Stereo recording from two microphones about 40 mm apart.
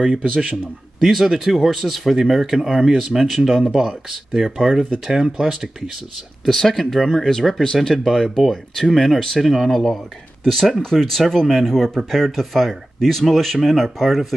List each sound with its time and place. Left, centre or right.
0.0 s a man's voice: right
1.0 s speech: centre
6.4 s speech: centre
10.4 s speech: centre